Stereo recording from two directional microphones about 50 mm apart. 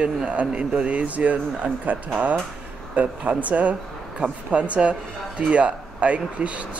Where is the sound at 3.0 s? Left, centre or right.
Right.